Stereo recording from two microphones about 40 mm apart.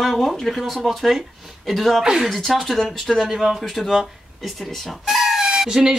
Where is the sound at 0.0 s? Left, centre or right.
Centre.